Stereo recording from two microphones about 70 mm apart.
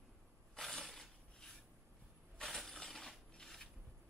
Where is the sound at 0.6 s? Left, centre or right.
Centre.